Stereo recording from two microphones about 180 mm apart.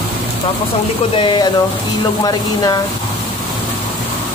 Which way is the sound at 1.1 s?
25° left (ahead or behind).